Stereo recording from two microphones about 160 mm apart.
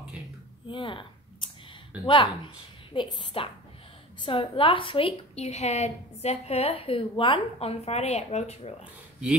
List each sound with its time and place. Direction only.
0.7 s a woman's voice: 30° left (ahead or behind)